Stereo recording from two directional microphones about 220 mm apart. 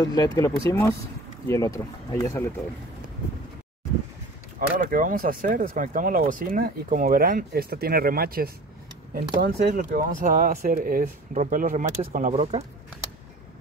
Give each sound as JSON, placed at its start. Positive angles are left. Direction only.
{"t": 0.0, "sound": "speech", "side_deg": 20}
{"t": 4.6, "sound": "speech", "side_deg": -35}